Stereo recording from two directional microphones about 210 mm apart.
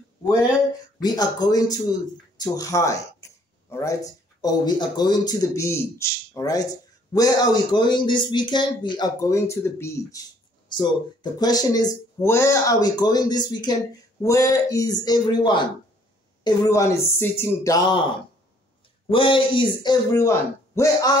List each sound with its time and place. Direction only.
1.0 s a man's voice: 20° left (ahead or behind)
19.0 s a man's voice: 25° left (ahead or behind)